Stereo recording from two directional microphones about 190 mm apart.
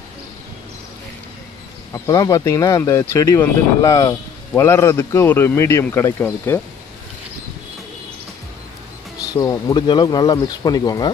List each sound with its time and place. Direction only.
1.9 s speech: 20° left (ahead or behind)
9.3 s speech: 20° left (ahead or behind)